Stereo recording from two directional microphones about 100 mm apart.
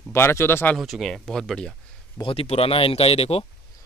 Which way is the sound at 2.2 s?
85° left.